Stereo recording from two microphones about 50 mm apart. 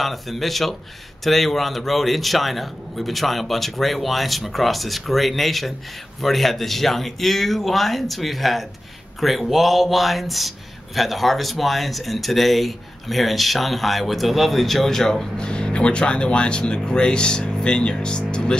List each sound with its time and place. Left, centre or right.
0.0 s speech: centre